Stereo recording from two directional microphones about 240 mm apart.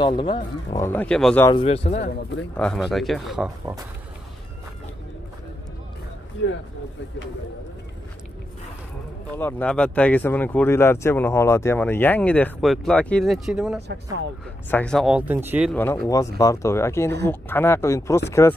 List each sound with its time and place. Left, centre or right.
0.0 s speech: centre
0.8 s speech: centre
1.5 s speech: left
2.5 s speech: centre
9.4 s speech: centre
15.7 s speech: centre